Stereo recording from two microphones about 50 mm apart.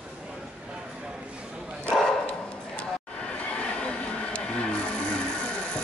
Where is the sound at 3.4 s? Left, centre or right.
Left.